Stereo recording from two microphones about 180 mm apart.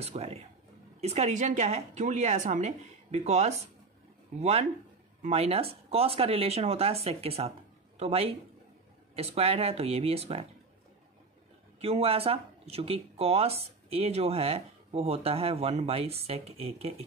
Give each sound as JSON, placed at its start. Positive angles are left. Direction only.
{"t": 0.0, "sound": "speech", "side_deg": -35}
{"t": 11.8, "sound": "speech", "side_deg": -35}